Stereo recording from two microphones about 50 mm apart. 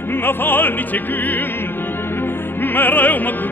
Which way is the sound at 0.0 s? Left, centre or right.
Left.